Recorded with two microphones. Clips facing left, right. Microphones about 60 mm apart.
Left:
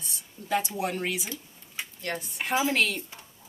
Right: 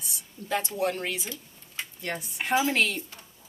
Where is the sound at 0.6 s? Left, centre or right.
Centre.